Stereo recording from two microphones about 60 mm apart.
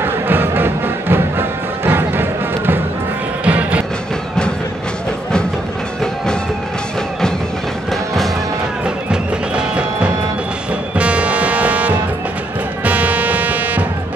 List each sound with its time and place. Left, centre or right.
0.0 s music: right
3.4 s music: right
8.8 s music: centre